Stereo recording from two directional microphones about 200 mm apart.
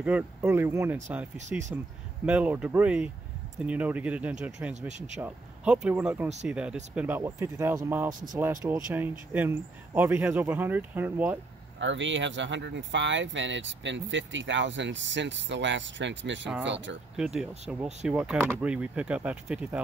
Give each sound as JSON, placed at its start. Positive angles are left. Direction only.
{"t": 0.0, "sound": "speech", "side_deg": -10}
{"t": 8.1, "sound": "speech", "side_deg": -40}
{"t": 8.4, "sound": "speech", "side_deg": -10}
{"t": 11.8, "sound": "speech", "side_deg": -65}
{"t": 17.2, "sound": "speech", "side_deg": -5}